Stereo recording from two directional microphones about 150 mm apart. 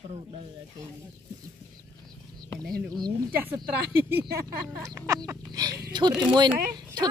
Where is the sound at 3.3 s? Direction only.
15° right (ahead or behind).